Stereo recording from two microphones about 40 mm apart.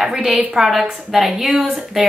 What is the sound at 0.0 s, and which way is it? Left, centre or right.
Speech, centre.